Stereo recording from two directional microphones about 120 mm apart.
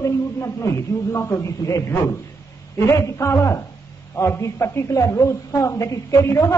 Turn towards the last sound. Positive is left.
turn(degrees=25)  # may be behind; listen again after turning